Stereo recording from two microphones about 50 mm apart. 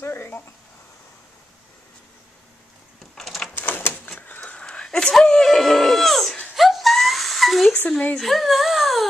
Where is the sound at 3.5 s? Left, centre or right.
Left.